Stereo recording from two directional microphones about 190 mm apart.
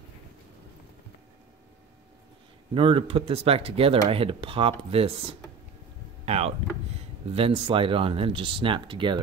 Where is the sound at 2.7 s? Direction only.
30° right (ahead or behind).